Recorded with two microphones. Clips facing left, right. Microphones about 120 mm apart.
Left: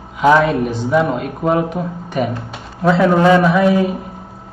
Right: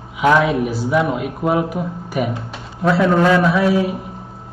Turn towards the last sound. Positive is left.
turn(degrees=-5)  # may be behind; listen again after turning